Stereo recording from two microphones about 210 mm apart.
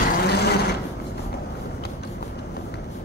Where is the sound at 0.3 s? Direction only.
50° left (ahead or behind).